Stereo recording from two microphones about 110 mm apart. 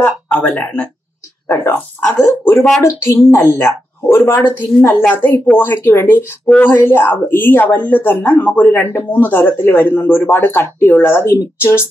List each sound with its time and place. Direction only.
0.0 s speech: 15° left (ahead or behind)
1.5 s speech: 25° left (ahead or behind)
4.8 s speech: 15° left (ahead or behind)